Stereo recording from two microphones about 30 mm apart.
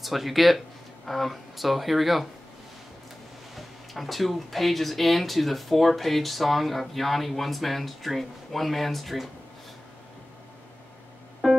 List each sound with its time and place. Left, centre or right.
0.0 s speech: centre
3.5 s speech: centre
11.4 s music: centre